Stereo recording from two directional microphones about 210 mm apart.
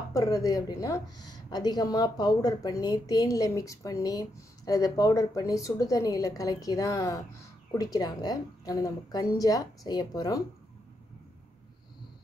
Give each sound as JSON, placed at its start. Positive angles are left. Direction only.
{"t": 0.1, "sound": "a woman's voice", "side_deg": 15}